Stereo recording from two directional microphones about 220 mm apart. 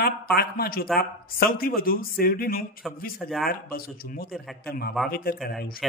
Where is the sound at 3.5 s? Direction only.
40° left (ahead or behind).